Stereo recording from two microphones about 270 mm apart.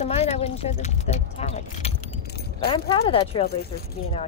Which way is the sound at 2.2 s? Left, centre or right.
Left.